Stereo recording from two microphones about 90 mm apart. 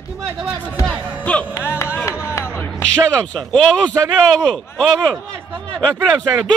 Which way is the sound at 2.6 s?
15° left (ahead or behind).